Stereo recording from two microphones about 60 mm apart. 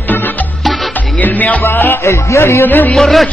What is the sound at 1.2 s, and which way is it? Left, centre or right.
Music, left.